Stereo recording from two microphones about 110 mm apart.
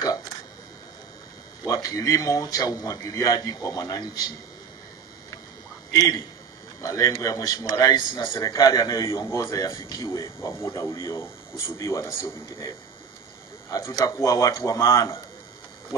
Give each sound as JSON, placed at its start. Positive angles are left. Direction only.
{"t": 1.7, "sound": "a man's voice", "side_deg": 30}
{"t": 5.9, "sound": "a man's voice", "side_deg": 30}